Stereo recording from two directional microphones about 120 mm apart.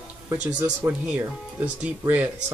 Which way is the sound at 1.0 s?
10° right (ahead or behind).